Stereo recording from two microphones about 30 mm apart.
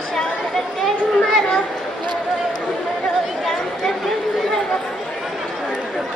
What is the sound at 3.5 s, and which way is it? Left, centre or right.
Chatter, centre.